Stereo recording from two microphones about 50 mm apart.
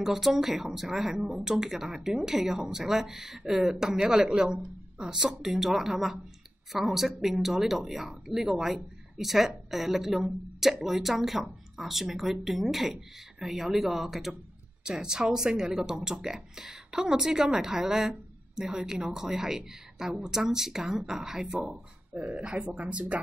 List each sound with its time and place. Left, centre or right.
0.0 s speech: centre
22.1 s speech: right